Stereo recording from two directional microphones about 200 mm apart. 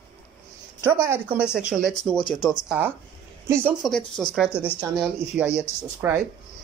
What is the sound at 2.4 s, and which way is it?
Speech, 20° left (ahead or behind).